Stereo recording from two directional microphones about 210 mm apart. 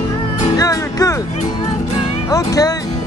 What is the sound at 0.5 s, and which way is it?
Speech, 15° left (ahead or behind).